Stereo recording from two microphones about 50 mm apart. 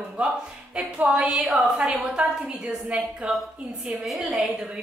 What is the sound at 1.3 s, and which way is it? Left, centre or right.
A woman's voice, centre.